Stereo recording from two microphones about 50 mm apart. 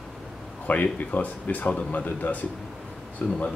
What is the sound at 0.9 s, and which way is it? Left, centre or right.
Speech, left.